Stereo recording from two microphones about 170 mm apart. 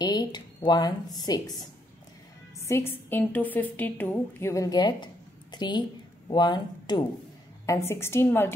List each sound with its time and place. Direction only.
0.0 s a woman's voice: 25° left (ahead or behind)
2.6 s a woman's voice: 15° left (ahead or behind)